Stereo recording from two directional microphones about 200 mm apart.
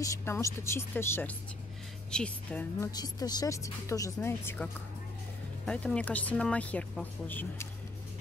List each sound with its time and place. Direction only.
0.0 s a woman's voice: 15° left (ahead or behind)
2.9 s speech: 20° left (ahead or behind)
5.7 s speech: 5° left (ahead or behind)